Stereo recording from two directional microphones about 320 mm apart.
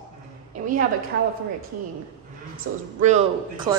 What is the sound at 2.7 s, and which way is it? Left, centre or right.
Speech, right.